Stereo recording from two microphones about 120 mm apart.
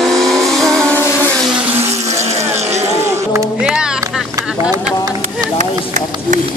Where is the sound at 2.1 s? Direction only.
65° right (ahead or behind).